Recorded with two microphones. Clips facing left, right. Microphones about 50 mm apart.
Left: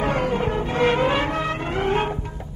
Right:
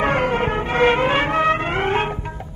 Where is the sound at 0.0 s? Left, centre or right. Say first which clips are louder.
Right 3 dB; right.